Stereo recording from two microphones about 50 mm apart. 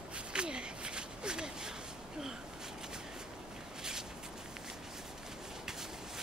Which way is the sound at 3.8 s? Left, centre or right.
Centre.